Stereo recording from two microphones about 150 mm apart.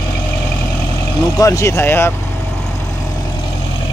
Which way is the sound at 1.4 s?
20° left (ahead or behind).